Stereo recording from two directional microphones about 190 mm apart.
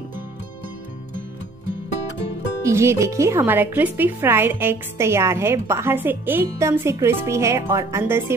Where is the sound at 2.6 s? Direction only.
15° right (ahead or behind).